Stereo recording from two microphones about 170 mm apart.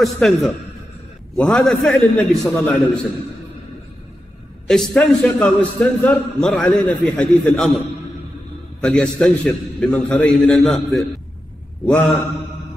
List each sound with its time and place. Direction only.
0.0 s a man's voice: centre (ahead or behind)
4.6 s a man's voice: 5° left (ahead or behind)
8.8 s a man's voice: 5° left (ahead or behind)